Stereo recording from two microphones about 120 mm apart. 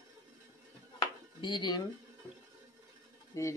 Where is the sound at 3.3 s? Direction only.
30° left (ahead or behind).